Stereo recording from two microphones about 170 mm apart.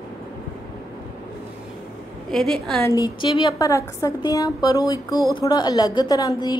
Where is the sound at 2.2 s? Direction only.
Centre (ahead or behind).